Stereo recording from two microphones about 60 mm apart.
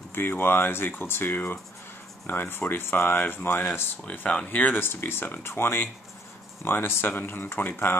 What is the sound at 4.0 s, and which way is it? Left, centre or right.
Speech, left.